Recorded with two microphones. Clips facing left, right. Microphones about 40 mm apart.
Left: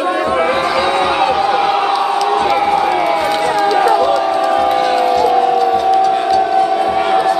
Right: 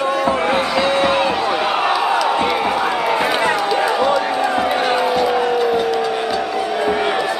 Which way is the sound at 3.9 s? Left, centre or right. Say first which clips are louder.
Left 4 dB; centre.